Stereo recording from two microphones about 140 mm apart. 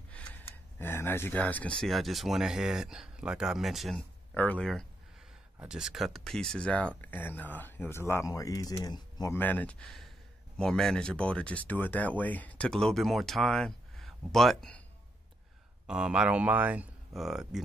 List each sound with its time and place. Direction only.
0.7 s speech: 15° left (ahead or behind)
9.4 s speech: 10° left (ahead or behind)
15.9 s speech: 5° right (ahead or behind)